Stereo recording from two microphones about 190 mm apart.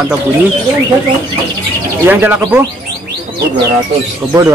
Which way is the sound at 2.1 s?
10° right (ahead or behind).